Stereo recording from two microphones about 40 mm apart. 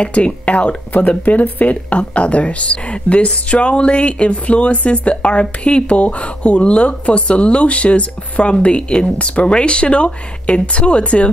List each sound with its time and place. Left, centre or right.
0.0 s speech: left